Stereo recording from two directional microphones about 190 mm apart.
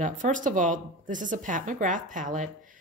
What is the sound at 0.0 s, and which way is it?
Speech, 40° right (ahead or behind).